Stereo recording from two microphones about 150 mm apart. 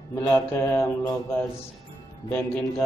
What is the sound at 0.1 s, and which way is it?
Mantra, 20° left (ahead or behind).